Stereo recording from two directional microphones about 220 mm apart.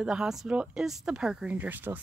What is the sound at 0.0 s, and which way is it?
Speech, 5° right (ahead or behind).